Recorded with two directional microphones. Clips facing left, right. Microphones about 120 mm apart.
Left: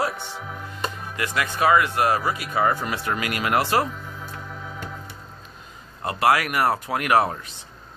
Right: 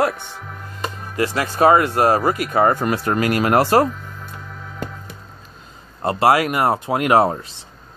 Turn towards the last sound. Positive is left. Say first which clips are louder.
# right 5 dB
turn(degrees=-30)  # may be behind; listen again after turning